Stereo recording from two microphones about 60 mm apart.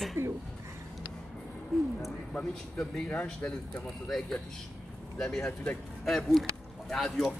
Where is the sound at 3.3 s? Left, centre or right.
Left.